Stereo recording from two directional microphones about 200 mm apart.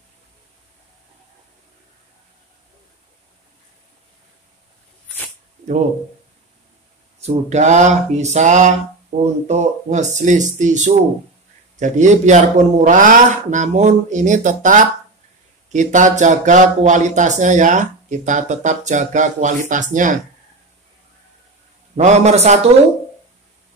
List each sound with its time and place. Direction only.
7.2 s speech: 35° right (ahead or behind)
21.9 s speech: 35° right (ahead or behind)